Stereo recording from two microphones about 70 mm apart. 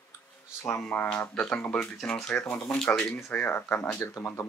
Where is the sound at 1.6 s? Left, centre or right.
Left.